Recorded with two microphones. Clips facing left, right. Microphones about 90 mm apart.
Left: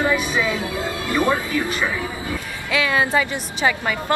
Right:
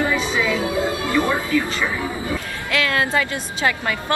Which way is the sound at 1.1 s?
20° left (ahead or behind).